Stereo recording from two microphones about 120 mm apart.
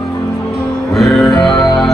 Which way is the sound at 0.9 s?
Centre (ahead or behind).